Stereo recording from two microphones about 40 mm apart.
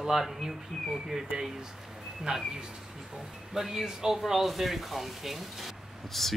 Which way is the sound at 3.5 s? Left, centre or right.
Centre.